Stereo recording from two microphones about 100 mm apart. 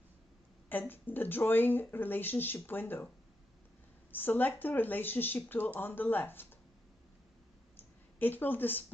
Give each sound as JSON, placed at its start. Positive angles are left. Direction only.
{"t": 0.7, "sound": "speech", "side_deg": 20}
{"t": 4.1, "sound": "speech", "side_deg": 20}
{"t": 7.7, "sound": "a sound", "side_deg": 20}